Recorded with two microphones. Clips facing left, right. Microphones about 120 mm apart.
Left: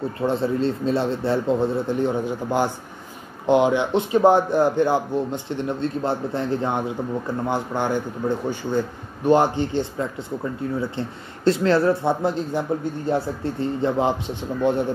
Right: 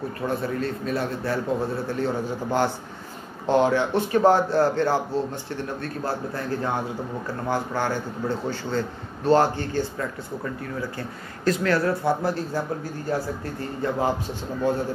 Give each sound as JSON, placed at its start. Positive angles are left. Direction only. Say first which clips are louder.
{"t": 0.3, "sound": "a man's voice", "louder": "left 5 dB", "side_deg": 25}